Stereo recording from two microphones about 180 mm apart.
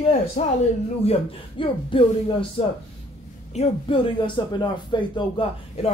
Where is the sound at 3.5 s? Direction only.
30° left (ahead or behind).